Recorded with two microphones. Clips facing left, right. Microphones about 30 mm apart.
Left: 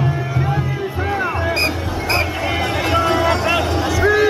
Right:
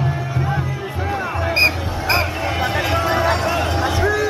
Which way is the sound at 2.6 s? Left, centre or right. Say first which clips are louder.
Left 2 dB; centre.